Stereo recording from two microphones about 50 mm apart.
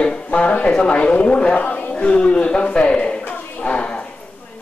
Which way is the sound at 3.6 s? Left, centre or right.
Left.